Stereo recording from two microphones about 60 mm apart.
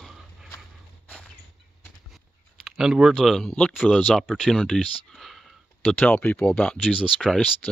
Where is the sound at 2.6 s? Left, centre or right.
Centre.